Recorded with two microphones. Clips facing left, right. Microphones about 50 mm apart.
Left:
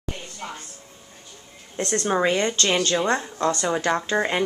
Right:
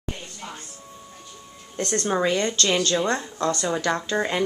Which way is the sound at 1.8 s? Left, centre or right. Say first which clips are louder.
Left 1 dB; centre.